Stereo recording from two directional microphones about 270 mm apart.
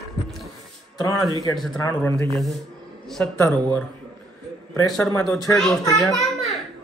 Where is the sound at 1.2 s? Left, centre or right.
Centre.